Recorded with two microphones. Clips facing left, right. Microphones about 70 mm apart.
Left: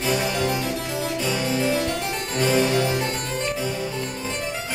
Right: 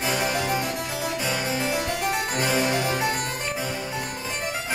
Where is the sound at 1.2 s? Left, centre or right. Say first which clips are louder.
Left 4 dB; right.